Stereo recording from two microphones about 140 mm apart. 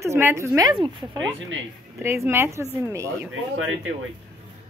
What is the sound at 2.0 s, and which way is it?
A woman's voice, 20° right (ahead or behind).